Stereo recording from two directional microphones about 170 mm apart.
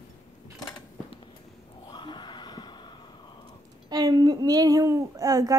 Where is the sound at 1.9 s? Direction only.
25° left (ahead or behind).